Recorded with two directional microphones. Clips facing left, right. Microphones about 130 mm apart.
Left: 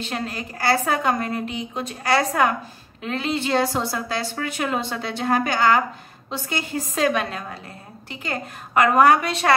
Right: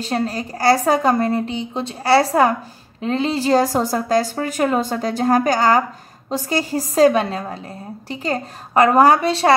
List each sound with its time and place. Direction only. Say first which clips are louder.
0.0 s a woman's voice: right 7 dB; 35° right (ahead or behind)